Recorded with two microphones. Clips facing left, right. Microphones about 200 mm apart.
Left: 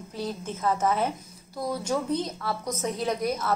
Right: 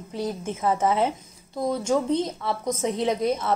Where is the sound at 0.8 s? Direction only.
25° right (ahead or behind).